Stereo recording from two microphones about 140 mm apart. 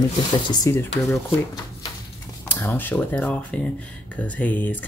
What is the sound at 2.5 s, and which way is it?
A woman's voice, 15° left (ahead or behind).